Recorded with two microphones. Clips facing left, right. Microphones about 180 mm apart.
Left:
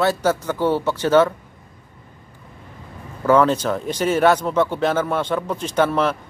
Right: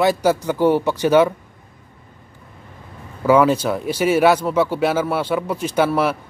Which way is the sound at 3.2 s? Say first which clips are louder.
Right 1 dB; 10° right (ahead or behind).